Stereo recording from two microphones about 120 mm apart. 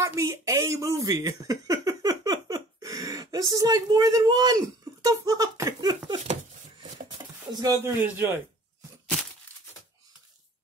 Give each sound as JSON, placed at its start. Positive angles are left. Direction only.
{"t": 0.0, "sound": "speech", "side_deg": -25}
{"t": 6.8, "sound": "a sound", "side_deg": -35}
{"t": 7.8, "sound": "a man's voice", "side_deg": -15}